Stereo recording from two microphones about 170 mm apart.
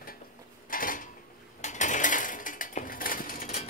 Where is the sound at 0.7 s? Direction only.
55° left (ahead or behind).